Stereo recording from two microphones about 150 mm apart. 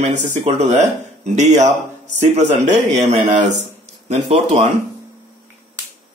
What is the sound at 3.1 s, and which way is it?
A man's voice, 50° right (ahead or behind).